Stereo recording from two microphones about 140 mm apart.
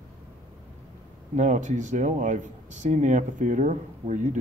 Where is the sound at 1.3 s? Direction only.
65° right (ahead or behind).